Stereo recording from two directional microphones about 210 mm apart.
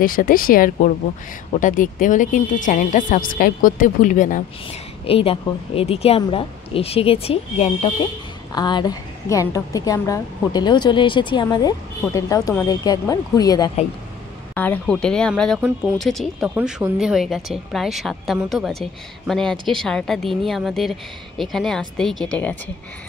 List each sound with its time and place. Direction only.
0.0 s speech: 40° left (ahead or behind)
5.0 s a woman's voice: 25° left (ahead or behind); by 22.6 s 5° left (ahead or behind)